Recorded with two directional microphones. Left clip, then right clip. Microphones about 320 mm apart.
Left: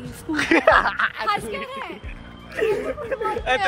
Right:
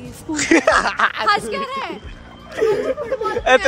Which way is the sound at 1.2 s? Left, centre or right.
Right.